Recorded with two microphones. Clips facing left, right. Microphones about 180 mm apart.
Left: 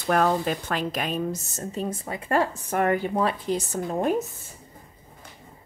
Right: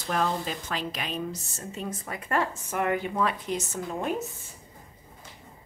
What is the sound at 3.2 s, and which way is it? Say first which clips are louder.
Speech: left 3 dB; 30° left (ahead or behind).